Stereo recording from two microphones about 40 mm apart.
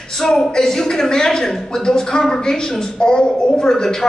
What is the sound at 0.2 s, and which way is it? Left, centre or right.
A woman's voice, centre.